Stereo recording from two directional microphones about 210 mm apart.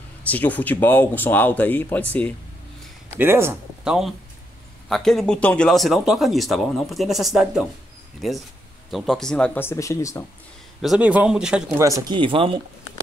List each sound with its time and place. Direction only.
0.3 s speech: 10° left (ahead or behind)
3.2 s speech: 10° right (ahead or behind); by 10.2 s 15° left (ahead or behind)
10.8 s speech: 5° right (ahead or behind)
11.8 s speech: 15° right (ahead or behind)